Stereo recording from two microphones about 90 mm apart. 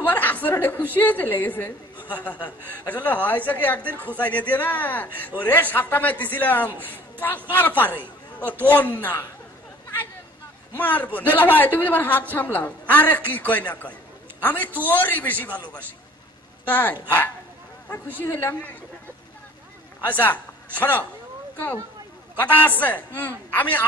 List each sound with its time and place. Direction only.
0.0 s chuckle: 20° left (ahead or behind)
0.9 s a woman's voice: 20° left (ahead or behind)
10.8 s a woman's voice: 20° left (ahead or behind)
18.2 s a woman's voice: 25° left (ahead or behind)
20.1 s a man's voice: 20° left (ahead or behind)
22.4 s a woman's voice: 20° left (ahead or behind)